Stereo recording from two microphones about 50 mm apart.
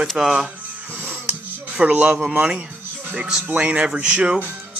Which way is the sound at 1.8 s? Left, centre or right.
Right.